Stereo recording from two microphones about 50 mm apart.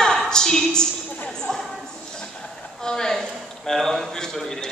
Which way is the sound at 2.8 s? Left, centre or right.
Centre.